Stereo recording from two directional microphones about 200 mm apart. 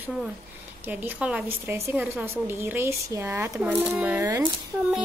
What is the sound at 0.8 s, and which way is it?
A woman's voice, 10° right (ahead or behind).